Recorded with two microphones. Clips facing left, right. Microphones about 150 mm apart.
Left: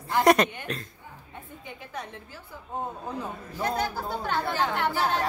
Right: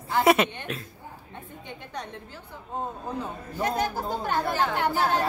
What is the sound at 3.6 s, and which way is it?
A woman's voice, 15° right (ahead or behind).